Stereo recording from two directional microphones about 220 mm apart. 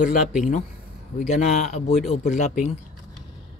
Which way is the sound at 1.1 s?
30° left (ahead or behind).